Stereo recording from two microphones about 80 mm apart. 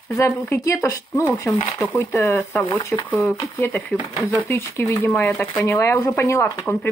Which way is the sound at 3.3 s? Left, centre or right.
Left.